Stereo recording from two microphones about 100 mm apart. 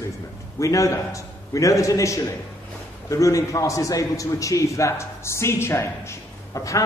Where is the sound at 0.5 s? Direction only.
30° left (ahead or behind).